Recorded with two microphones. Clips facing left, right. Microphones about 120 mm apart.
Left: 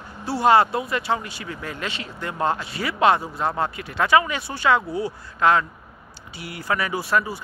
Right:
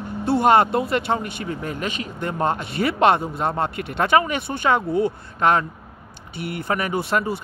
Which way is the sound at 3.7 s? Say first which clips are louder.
Right 2 dB; 55° right (ahead or behind).